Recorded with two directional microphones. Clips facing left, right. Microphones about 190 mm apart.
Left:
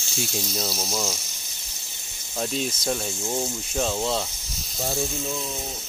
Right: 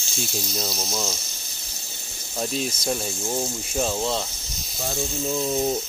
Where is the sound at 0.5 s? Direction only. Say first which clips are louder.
Even; centre (ahead or behind).